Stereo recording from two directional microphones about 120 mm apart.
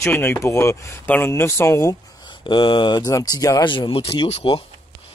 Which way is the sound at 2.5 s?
40° left (ahead or behind).